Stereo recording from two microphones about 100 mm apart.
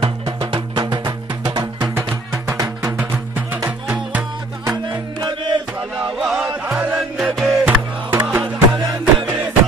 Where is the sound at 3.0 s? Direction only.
15° right (ahead or behind).